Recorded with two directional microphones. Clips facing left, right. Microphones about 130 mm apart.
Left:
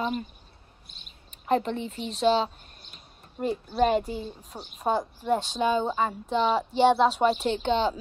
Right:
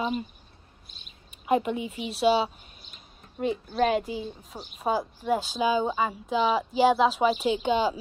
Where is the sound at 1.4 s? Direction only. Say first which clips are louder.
Right 1 dB; 10° right (ahead or behind).